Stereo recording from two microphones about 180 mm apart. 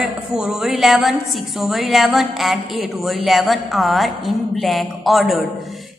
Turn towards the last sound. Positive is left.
turn(degrees=0)  # may be behind; listen again after turning